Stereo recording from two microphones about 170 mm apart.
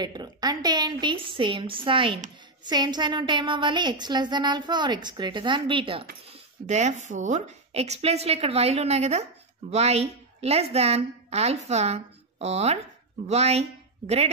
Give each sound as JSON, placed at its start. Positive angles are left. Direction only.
{"t": 0.0, "sound": "a woman's voice", "side_deg": -25}
{"t": 6.6, "sound": "a woman's voice", "side_deg": -45}